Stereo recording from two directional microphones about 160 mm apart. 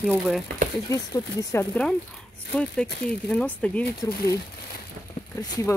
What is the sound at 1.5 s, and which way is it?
Speech, 10° left (ahead or behind).